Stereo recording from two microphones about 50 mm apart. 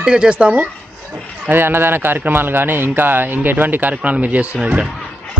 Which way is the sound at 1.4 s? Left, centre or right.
Right.